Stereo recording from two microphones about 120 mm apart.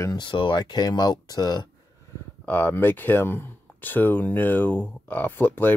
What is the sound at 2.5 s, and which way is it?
Speech, 15° left (ahead or behind).